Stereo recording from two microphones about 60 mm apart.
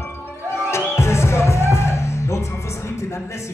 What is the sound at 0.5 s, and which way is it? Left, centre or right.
Music, left.